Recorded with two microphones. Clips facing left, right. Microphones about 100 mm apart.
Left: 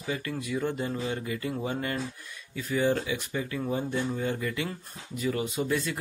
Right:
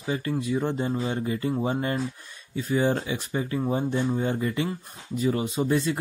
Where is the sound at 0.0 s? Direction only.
30° right (ahead or behind).